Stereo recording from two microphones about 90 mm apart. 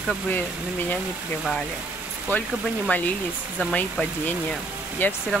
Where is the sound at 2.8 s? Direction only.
20° left (ahead or behind).